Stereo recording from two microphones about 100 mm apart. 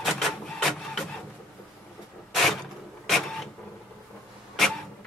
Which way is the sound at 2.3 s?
Centre (ahead or behind).